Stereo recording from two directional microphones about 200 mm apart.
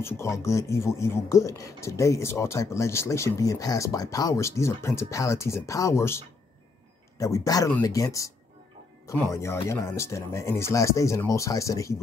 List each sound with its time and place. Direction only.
0.0 s speech: 15° left (ahead or behind)
7.2 s speech: 15° left (ahead or behind)